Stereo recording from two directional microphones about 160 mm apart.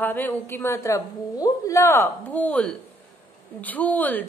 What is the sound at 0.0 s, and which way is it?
A woman's voice, 10° left (ahead or behind).